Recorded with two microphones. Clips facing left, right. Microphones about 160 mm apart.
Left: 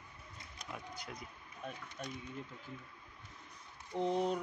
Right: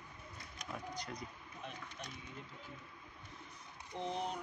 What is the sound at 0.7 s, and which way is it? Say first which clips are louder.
Speech: right 3 dB; 5° left (ahead or behind).